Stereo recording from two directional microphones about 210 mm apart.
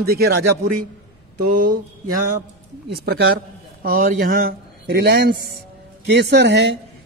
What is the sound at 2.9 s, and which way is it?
A woman's voice, 50° right (ahead or behind).